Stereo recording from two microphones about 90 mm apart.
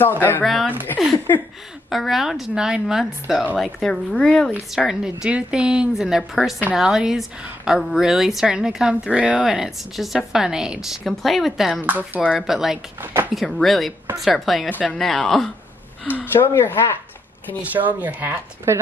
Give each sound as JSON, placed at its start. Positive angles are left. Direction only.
{"t": 0.4, "sound": "a woman's voice", "side_deg": 0}
{"t": 1.9, "sound": "a woman's voice", "side_deg": 0}
{"t": 4.6, "sound": "a woman's voice", "side_deg": -5}
{"t": 11.8, "sound": "speech", "side_deg": -20}
{"t": 12.4, "sound": "a woman's voice", "side_deg": -5}
{"t": 13.0, "sound": "speech", "side_deg": -25}
{"t": 13.3, "sound": "a woman's voice", "side_deg": 0}
{"t": 14.7, "sound": "speech", "side_deg": 15}
{"t": 15.0, "sound": "a woman's voice", "side_deg": 5}
{"t": 16.1, "sound": "speech", "side_deg": 20}
{"t": 17.6, "sound": "speech", "side_deg": -15}